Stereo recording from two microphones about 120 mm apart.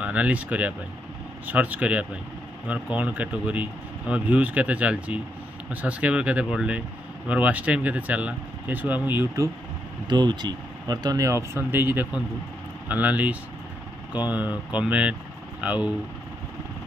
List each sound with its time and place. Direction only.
0.0 s speech: 10° right (ahead or behind)
10.0 s speech: 40° right (ahead or behind); by 15.9 s 10° right (ahead or behind)